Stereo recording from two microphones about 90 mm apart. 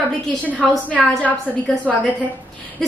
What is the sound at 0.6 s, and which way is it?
A woman's voice, 15° left (ahead or behind).